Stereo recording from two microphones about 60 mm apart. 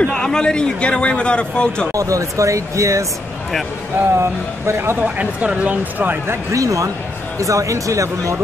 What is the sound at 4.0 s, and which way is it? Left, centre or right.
Speech, right.